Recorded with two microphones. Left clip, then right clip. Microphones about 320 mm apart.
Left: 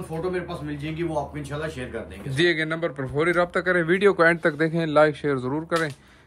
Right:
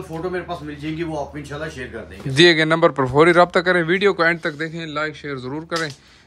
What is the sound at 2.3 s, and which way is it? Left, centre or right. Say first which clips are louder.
A man's voice: right 9 dB; centre.